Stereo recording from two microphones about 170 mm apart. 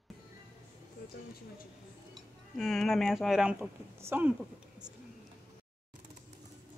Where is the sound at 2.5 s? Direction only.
Centre (ahead or behind).